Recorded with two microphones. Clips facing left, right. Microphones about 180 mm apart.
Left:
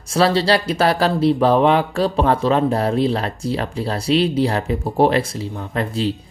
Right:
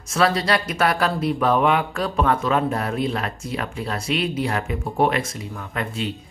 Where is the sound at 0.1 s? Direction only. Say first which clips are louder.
Left 4 dB; 30° left (ahead or behind).